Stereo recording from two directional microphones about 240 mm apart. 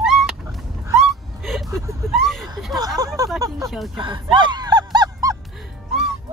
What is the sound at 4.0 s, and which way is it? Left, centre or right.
Goose, right.